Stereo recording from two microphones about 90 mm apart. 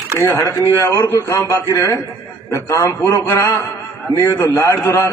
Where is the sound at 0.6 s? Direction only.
35° left (ahead or behind).